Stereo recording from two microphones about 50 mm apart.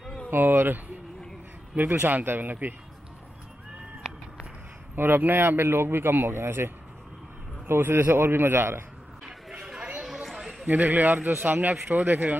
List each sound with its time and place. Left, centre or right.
0.3 s speech: right
1.8 s speech: right
4.9 s speech: right
9.2 s a sound: centre
10.6 s speech: right